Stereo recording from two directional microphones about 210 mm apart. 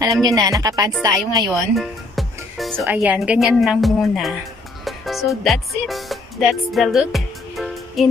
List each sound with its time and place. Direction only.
0.0 s speech: 15° right (ahead or behind)
1.4 s music: centre (ahead or behind)
2.8 s a woman's voice: 10° right (ahead or behind)
4.8 s music: centre (ahead or behind)